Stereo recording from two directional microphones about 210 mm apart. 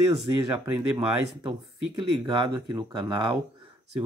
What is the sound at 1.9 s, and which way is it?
Speech, 20° right (ahead or behind).